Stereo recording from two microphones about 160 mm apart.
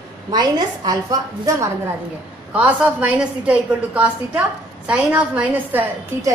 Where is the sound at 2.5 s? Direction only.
10° right (ahead or behind).